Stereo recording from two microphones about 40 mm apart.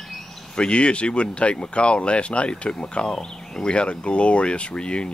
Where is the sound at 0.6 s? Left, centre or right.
Left.